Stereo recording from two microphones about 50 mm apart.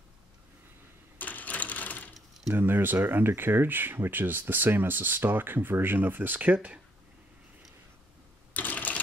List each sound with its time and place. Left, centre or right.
1.1 s sewing machine: left
2.5 s speech: right
8.5 s typewriter: left